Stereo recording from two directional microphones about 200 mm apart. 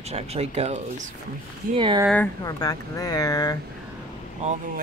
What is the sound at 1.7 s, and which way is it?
Speech, 25° right (ahead or behind).